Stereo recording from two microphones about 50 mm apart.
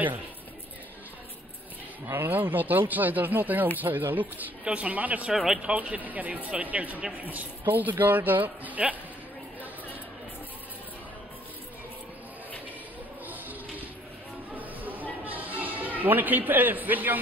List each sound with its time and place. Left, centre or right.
2.0 s speech: right
2.3 s a man's voice: right
5.3 s speech: centre
5.6 s a man's voice: right
13.3 s music: right
15.2 s a sound: right